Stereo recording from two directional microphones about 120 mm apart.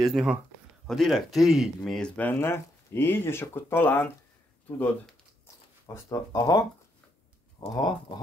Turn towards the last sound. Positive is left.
turn(degrees=30)  # may be behind; listen again after turning